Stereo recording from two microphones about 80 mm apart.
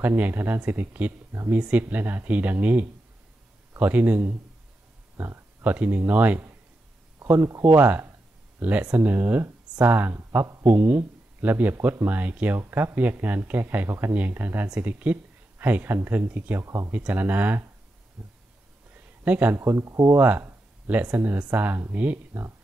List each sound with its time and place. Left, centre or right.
0.0 s speech: right
7.3 s speech: right
7.6 s speech: right
16.6 s speech: right
16.9 s speech: centre
18.2 s heart sounds: centre
19.2 s speech: centre
19.5 s speech: right
19.8 s speech: right
20.1 s speech: right